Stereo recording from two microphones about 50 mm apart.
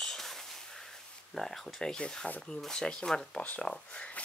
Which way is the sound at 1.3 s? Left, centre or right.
Centre.